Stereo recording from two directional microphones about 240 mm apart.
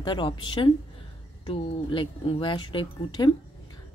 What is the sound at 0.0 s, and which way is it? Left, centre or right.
A woman's voice, centre.